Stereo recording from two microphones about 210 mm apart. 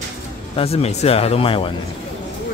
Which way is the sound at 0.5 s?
30° left (ahead or behind).